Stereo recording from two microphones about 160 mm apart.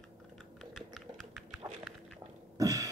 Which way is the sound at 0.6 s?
Centre (ahead or behind).